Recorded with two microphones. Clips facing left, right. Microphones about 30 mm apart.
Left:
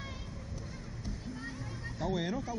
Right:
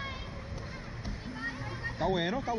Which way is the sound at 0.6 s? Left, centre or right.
Right.